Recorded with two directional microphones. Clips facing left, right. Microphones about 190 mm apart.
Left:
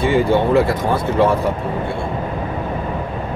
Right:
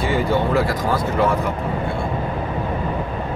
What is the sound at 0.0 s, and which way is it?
Speech, 25° left (ahead or behind).